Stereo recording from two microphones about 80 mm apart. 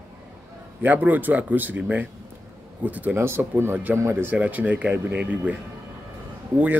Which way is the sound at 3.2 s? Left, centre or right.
Right.